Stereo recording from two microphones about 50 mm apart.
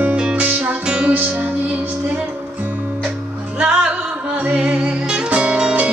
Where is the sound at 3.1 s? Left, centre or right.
Centre.